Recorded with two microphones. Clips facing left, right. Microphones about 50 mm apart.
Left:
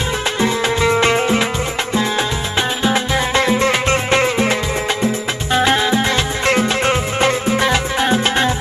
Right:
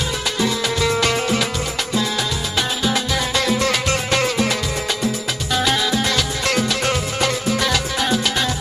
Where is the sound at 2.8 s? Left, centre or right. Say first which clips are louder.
Left 5 dB; left.